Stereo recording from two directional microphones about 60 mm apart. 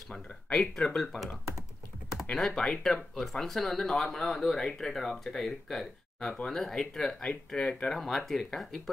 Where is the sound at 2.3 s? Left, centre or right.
Centre.